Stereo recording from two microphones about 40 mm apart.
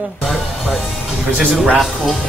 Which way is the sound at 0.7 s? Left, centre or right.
Centre.